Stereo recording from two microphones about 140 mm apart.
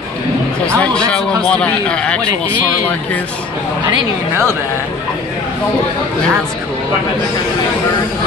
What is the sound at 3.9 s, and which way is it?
Speech, 15° right (ahead or behind).